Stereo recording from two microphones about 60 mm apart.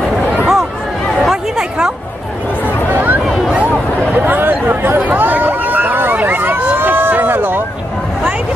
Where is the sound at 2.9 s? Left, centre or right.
Right.